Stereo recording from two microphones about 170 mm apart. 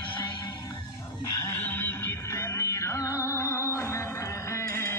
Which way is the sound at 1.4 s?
15° left (ahead or behind).